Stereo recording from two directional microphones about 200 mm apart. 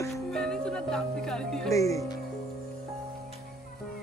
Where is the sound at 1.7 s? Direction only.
15° left (ahead or behind).